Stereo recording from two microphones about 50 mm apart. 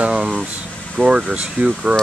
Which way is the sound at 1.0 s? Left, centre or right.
Right.